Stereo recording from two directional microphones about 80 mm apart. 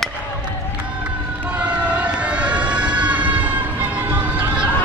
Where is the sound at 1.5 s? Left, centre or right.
Centre.